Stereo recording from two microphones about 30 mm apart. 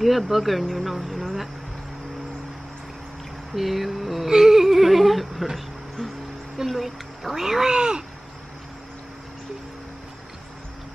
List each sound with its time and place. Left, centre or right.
0.0 s speech: centre
3.5 s speech: centre
4.3 s a sound: centre
6.6 s speech: centre
7.7 s speech: right